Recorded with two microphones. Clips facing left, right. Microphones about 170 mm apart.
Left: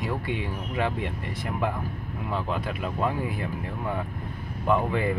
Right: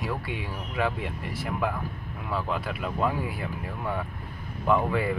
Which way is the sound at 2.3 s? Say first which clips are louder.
Even; 15° left (ahead or behind).